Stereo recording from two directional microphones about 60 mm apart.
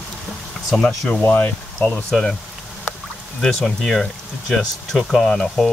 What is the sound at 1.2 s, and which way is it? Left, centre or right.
Speech, left.